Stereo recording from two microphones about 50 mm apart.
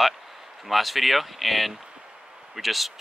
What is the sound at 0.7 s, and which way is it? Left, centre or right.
Speech, centre.